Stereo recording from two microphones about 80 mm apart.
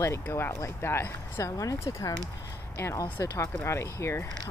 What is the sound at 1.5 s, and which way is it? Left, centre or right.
Speech, left.